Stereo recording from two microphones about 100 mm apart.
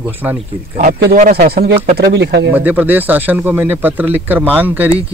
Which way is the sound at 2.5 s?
15° right (ahead or behind).